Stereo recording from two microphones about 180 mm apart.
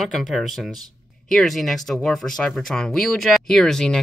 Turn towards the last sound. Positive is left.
turn(degrees=5)  # may be behind; listen again after turning